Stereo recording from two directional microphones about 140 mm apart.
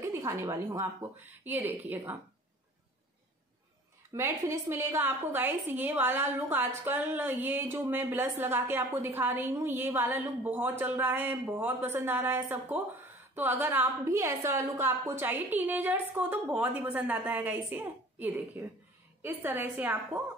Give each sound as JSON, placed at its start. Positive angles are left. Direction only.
{"t": 0.0, "sound": "a woman's voice", "side_deg": -20}
{"t": 4.1, "sound": "a woman's voice", "side_deg": -20}